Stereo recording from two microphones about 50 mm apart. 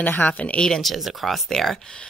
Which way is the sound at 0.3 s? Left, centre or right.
Left.